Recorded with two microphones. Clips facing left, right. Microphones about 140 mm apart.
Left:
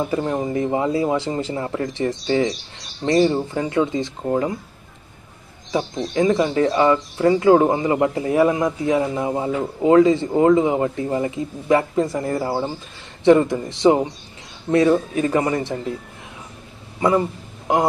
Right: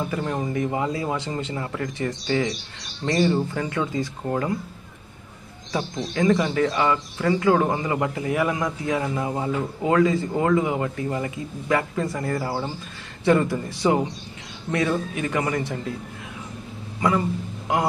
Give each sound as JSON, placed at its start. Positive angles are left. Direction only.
{"t": 0.0, "sound": "speech", "side_deg": 25}
{"t": 5.7, "sound": "speech", "side_deg": 25}